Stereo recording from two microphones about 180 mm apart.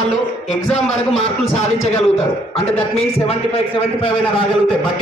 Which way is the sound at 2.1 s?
35° left (ahead or behind).